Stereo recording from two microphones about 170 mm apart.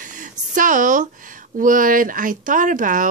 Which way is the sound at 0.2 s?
50° right (ahead or behind).